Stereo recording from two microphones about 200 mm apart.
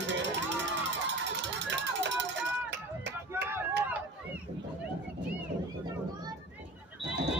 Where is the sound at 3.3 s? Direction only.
10° right (ahead or behind).